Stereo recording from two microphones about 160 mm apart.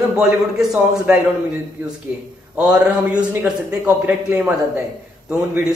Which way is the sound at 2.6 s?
5° right (ahead or behind).